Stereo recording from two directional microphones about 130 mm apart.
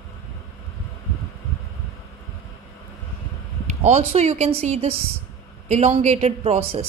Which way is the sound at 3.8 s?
60° right (ahead or behind).